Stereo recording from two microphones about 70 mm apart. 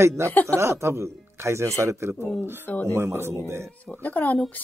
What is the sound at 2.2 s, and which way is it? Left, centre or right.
Speech, centre.